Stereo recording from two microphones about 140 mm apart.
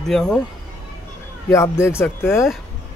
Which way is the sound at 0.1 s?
5° left (ahead or behind).